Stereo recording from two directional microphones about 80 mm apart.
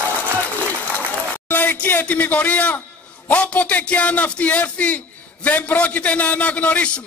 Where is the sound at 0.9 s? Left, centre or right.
Left.